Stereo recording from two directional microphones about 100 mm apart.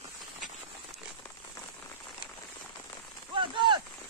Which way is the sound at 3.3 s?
55° right (ahead or behind).